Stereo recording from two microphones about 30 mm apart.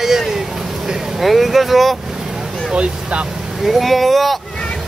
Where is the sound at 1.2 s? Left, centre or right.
Centre.